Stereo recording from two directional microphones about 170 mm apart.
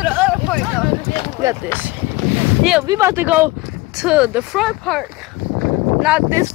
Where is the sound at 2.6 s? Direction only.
5° right (ahead or behind).